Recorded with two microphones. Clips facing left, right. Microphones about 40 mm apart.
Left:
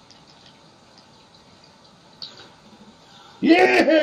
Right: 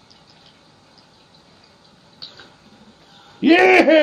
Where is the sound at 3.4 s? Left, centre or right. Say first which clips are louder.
Right 3 dB; right.